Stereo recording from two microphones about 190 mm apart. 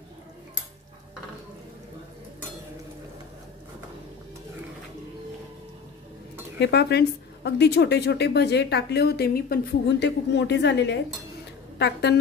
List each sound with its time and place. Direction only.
6.6 s speech: 60° left (ahead or behind)